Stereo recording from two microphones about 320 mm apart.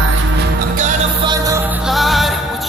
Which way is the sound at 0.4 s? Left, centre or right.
Right.